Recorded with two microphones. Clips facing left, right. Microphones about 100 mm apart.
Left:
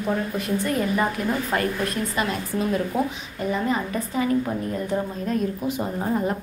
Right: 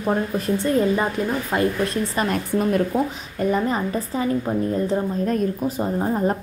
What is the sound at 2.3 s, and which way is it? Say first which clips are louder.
Speech: right 4 dB; 50° right (ahead or behind).